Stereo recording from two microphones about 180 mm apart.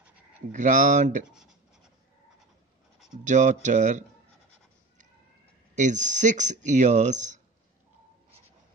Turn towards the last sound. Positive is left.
turn(degrees=-45)  # may be behind; listen again after turning